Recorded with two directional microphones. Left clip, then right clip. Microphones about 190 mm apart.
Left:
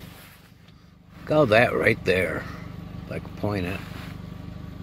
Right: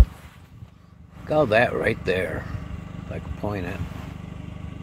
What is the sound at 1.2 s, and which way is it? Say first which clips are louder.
Speech: left 1 dB; 10° left (ahead or behind).